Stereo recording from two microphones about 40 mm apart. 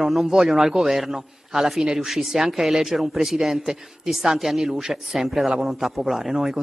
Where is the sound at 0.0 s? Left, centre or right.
Centre.